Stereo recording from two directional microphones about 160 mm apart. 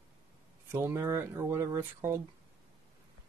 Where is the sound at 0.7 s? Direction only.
15° right (ahead or behind).